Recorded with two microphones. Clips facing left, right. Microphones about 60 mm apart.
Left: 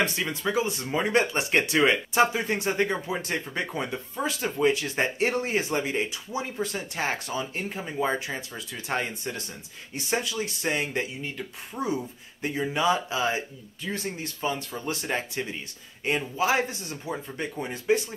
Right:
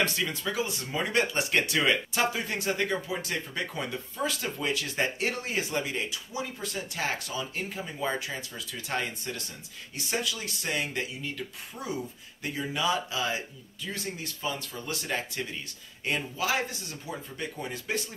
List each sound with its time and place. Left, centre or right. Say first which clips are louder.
0.0 s speech: left 2 dB; left
14.7 s speech: left 3 dB; left
17.1 s speech: left 4 dB; left